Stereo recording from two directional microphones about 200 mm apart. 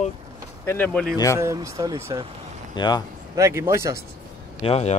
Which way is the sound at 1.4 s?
15° right (ahead or behind).